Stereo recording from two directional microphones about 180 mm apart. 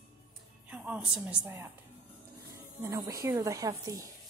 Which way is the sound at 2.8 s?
20° right (ahead or behind).